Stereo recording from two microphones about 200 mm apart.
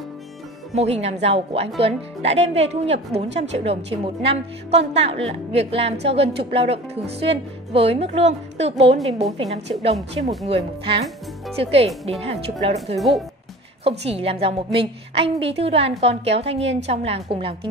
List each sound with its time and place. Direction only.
0.7 s a woman's voice: 30° right (ahead or behind)
13.8 s a woman's voice: 30° right (ahead or behind)